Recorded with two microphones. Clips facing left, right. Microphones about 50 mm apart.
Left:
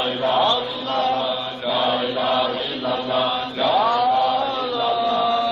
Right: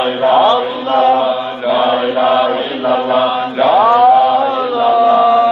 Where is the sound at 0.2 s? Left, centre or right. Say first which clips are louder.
Right 10 dB; right.